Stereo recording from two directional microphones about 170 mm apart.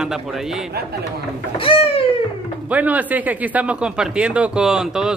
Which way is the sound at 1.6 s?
35° left (ahead or behind).